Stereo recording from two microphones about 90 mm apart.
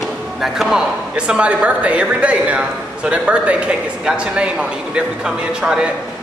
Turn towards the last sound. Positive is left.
turn(degrees=-5)  # may be behind; listen again after turning